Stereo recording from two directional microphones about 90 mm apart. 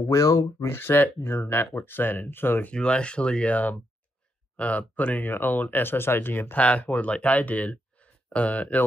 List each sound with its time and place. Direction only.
0.0 s speech: 40° left (ahead or behind)
0.7 s speech: 25° left (ahead or behind)
2.7 s speech: 10° left (ahead or behind)